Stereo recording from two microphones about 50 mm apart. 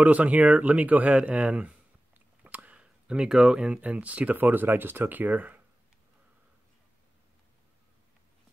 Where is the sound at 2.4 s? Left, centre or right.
Right.